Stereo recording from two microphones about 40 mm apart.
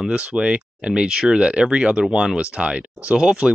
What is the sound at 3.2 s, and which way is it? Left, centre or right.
Speech, centre.